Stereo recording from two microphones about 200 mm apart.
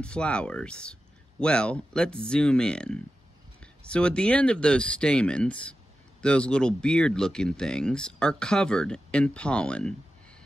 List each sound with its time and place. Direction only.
0.0 s speech: 5° left (ahead or behind)